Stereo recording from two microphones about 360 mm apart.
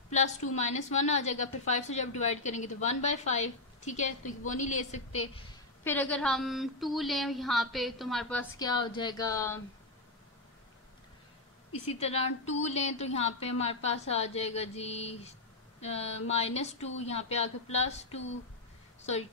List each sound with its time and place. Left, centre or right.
0.1 s a woman's voice: centre
5.9 s a woman's voice: centre
11.9 s speech: centre